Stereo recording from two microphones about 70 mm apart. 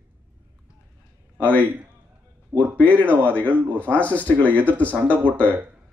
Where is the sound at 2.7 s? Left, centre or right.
Left.